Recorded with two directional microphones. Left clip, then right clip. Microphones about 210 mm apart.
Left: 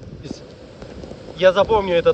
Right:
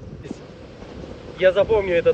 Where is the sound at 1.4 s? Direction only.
10° left (ahead or behind).